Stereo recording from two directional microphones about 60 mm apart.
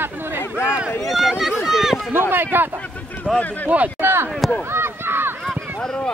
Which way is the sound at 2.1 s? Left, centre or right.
Right.